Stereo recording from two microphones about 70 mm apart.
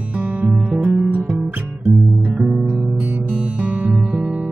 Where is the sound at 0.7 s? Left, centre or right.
Centre.